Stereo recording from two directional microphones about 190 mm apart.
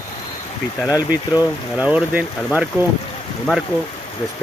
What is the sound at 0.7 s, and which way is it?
Speech, 15° left (ahead or behind).